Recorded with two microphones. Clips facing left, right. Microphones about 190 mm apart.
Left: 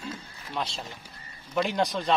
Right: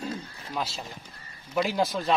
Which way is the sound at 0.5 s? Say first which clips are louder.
Even; 5° right (ahead or behind).